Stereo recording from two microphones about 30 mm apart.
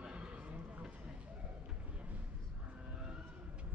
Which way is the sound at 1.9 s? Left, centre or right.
Right.